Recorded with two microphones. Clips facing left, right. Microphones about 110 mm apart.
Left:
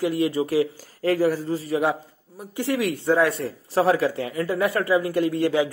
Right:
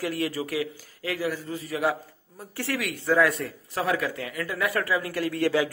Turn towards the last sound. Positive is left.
turn(degrees=20)  # may be behind; listen again after turning